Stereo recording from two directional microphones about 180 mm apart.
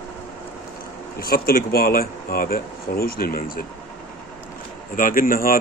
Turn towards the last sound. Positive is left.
turn(degrees=50)  # may be behind; listen again after turning